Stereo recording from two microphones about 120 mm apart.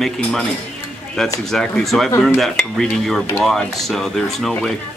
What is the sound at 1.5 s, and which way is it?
Speech, 5° left (ahead or behind).